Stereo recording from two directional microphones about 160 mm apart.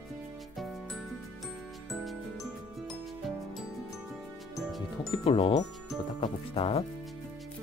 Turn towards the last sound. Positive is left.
turn(degrees=35)  # may be behind; listen again after turning